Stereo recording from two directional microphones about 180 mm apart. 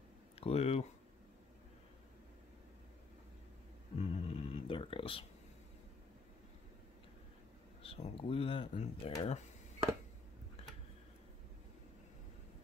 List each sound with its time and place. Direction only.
0.4 s speech: 35° left (ahead or behind)
3.9 s a sound: 35° left (ahead or behind)
7.8 s speech: 30° left (ahead or behind)